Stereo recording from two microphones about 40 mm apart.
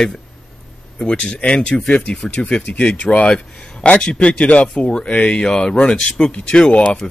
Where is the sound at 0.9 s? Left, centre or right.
Left.